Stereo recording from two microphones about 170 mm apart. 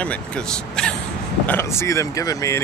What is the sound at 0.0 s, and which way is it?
Speech, 5° left (ahead or behind).